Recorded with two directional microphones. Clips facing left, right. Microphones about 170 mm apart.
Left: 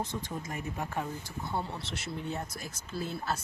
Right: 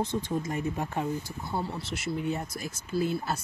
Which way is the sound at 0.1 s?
25° right (ahead or behind).